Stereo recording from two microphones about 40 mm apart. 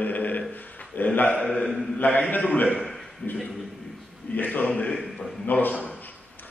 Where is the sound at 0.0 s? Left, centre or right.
Left.